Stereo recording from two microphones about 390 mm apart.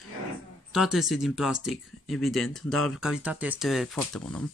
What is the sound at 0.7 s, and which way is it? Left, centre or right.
Speech, centre.